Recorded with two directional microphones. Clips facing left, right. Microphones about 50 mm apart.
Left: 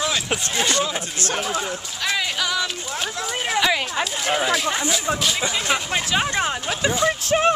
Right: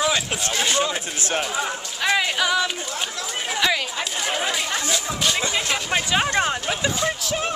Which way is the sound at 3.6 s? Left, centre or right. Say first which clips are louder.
Right 1 dB; centre.